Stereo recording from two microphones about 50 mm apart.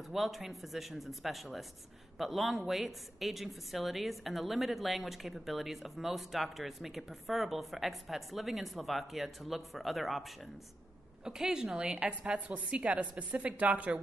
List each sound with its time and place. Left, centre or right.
0.1 s a woman's voice: centre; by 13.9 s right